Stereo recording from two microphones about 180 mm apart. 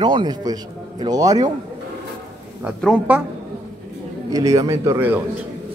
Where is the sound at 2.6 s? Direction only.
5° right (ahead or behind).